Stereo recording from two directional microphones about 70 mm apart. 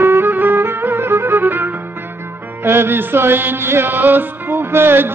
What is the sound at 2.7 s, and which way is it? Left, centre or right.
Music, right.